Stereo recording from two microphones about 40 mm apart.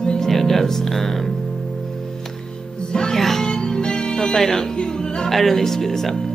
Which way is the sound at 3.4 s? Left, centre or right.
Centre.